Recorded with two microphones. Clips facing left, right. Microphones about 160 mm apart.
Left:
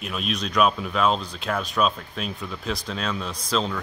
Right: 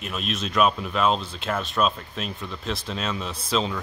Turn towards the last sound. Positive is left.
turn(degrees=-5)  # may be behind; listen again after turning